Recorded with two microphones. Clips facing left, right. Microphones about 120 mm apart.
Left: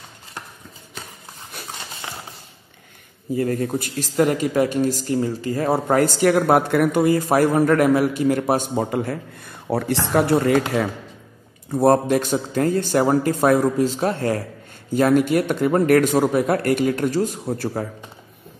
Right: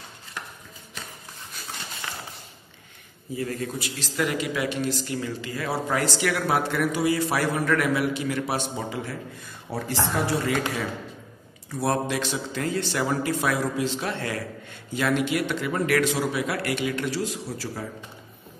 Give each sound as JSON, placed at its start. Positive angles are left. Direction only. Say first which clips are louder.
{"t": 3.3, "sound": "a man's voice", "louder": "left 8 dB", "side_deg": 45}